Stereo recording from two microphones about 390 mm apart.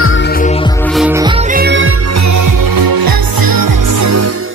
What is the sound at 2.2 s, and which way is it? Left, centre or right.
Music, right.